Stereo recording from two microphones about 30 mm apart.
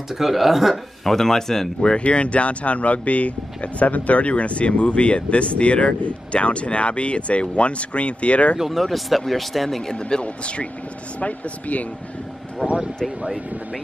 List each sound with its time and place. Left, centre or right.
0.1 s speech: centre
1.0 s speech: centre
2.0 s speech: left
8.7 s speech: centre
9.9 s speech: left
10.2 s speech: left
11.1 s speech: left
12.6 s speech: centre